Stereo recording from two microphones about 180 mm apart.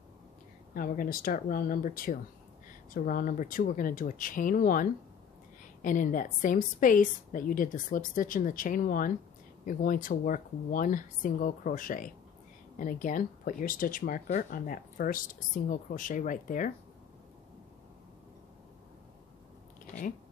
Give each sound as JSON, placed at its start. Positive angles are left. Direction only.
{"t": 0.7, "sound": "a woman's voice", "side_deg": 50}